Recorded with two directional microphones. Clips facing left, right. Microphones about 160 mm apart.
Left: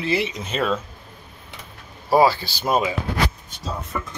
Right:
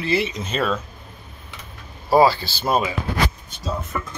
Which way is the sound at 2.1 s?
15° left (ahead or behind).